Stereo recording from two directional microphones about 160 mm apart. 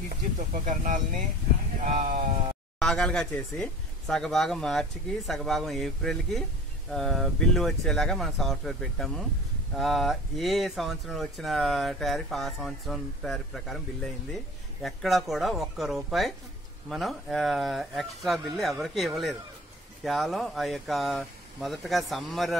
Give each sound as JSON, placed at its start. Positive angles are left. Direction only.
{"t": 0.7, "sound": "speech", "side_deg": -50}
{"t": 2.8, "sound": "speech", "side_deg": 5}